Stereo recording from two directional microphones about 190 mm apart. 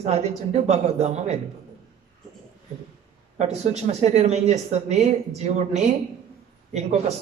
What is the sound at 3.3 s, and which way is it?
Speech, 35° right (ahead or behind).